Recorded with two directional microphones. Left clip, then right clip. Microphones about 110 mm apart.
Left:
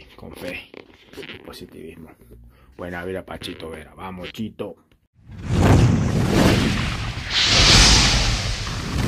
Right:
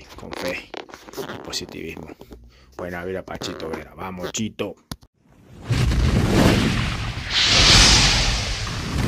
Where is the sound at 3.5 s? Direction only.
25° right (ahead or behind).